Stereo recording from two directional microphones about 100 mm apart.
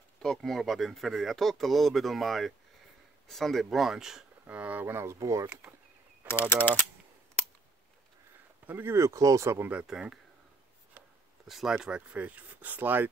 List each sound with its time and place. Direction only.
0.2 s speech: 5° left (ahead or behind); by 5.5 s 35° right (ahead or behind)
5.5 s speech: 20° right (ahead or behind)
6.2 s mechanisms: 20° right (ahead or behind)
8.6 s speech: 20° right (ahead or behind)
9.7 s speech: 10° right (ahead or behind)